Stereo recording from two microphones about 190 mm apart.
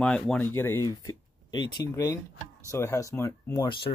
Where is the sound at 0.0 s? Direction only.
5° left (ahead or behind).